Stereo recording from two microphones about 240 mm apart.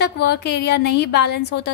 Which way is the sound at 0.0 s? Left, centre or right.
Left.